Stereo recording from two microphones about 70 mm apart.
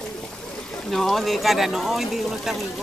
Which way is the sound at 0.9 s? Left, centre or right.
Centre.